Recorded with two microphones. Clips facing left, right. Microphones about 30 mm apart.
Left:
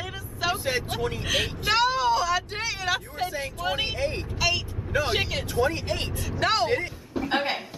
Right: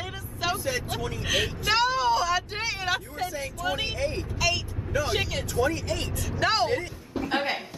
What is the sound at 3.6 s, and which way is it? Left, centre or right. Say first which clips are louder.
Vehicle: left 1 dB; left.